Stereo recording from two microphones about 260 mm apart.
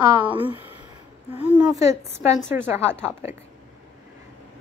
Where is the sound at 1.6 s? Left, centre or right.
Centre.